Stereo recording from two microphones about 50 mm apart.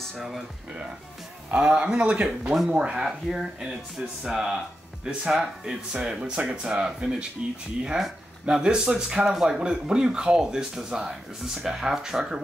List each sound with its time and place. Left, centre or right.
1.5 s speech: right